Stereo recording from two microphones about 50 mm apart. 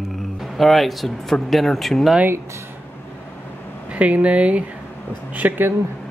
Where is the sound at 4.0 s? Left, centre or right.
Right.